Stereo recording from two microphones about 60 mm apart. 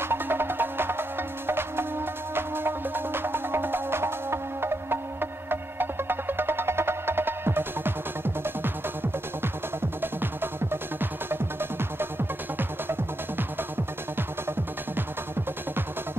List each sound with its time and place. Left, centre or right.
0.0 s music: right
12.5 s music: right